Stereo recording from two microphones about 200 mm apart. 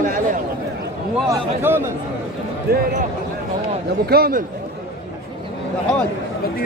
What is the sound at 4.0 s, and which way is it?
Speech, 50° right (ahead or behind).